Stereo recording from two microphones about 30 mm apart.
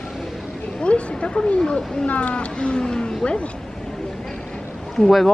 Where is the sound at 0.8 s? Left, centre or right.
Left.